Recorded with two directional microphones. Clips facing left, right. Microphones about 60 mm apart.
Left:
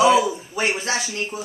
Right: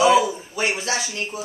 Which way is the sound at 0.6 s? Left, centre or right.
Left.